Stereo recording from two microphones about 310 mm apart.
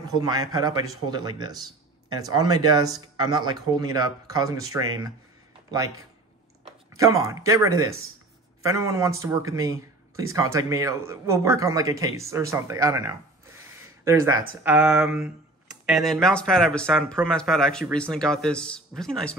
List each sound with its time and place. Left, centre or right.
0.1 s a man's voice: centre
6.6 s speech: centre
7.7 s speech: right
8.6 s a man's voice: centre